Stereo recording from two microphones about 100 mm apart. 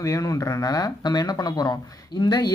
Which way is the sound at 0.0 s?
35° left (ahead or behind).